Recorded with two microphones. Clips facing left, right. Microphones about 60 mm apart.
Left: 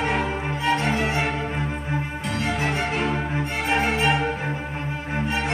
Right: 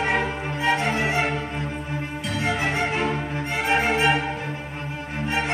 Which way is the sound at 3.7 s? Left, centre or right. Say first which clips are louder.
Right 1 dB; centre.